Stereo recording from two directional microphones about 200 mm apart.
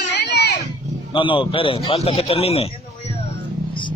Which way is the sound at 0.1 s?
60° left (ahead or behind).